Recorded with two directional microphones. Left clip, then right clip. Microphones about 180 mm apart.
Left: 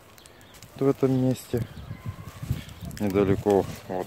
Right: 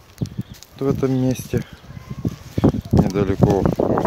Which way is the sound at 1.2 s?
20° right (ahead or behind).